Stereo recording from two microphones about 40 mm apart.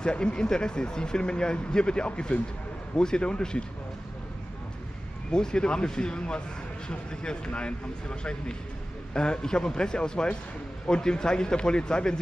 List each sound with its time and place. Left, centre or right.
0.0 s speech: left
5.3 s speech: centre